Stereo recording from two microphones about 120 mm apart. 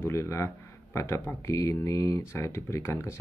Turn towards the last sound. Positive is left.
turn(degrees=25)  # may be behind; listen again after turning